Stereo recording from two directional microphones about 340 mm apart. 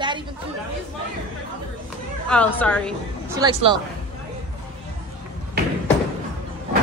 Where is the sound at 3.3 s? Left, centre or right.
Centre.